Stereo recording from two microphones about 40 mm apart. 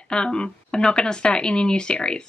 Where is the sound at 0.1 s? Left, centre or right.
Left.